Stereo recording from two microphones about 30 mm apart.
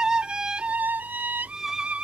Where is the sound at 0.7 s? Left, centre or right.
Right.